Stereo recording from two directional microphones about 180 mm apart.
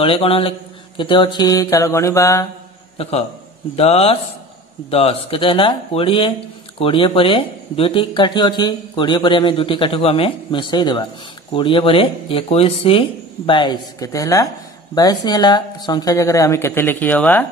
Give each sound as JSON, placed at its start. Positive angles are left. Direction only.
{"t": 0.0, "sound": "speech", "side_deg": 30}
{"t": 3.0, "sound": "speech", "side_deg": 35}